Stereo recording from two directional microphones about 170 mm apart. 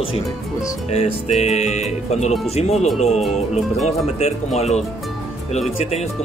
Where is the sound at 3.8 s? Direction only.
40° left (ahead or behind).